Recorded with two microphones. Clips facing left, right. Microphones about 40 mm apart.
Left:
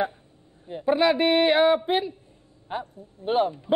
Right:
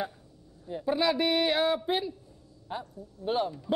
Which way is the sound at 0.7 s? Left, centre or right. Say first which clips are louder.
Left 6 dB; left.